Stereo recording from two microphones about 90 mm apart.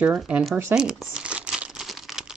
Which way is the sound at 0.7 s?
10° right (ahead or behind).